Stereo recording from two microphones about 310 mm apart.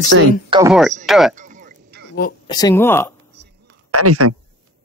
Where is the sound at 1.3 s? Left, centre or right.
Right.